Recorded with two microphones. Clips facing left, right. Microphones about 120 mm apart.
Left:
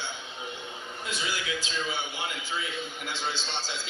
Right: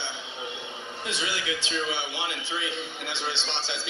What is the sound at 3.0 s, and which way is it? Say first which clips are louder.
Speech: even; 70° right (ahead or behind).